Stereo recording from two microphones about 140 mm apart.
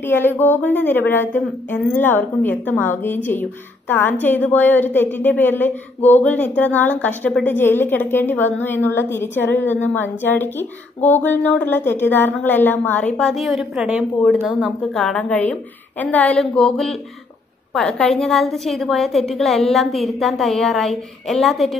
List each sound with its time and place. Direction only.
0.0 s a woman's voice: 15° left (ahead or behind)